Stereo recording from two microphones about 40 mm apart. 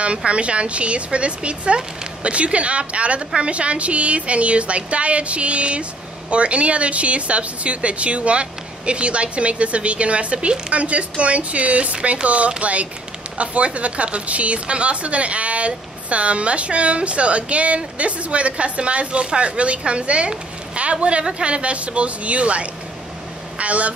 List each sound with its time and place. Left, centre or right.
0.0 s a woman's voice: right